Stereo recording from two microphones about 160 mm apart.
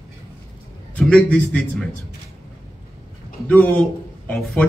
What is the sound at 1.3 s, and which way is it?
Speech, 5° left (ahead or behind).